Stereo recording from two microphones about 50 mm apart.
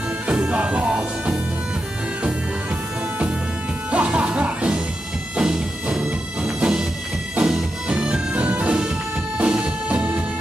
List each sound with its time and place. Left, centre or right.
0.3 s music: right
3.9 s music: right